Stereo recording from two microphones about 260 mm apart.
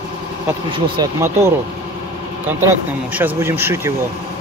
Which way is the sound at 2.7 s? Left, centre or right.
Centre.